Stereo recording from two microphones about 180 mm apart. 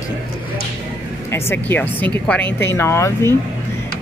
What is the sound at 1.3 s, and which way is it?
Speech, 10° left (ahead or behind).